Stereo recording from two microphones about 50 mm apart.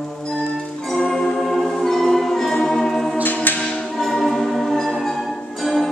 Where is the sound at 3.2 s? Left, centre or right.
Left.